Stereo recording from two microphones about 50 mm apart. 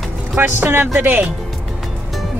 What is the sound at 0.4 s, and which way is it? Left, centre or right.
Speech, right.